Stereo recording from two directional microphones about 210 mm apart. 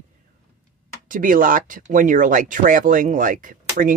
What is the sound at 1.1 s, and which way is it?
Speech, 40° right (ahead or behind).